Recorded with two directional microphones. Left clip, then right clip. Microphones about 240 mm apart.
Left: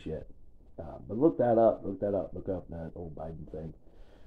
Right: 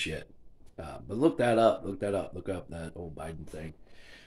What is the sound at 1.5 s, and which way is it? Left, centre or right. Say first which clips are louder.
Speech: even; right.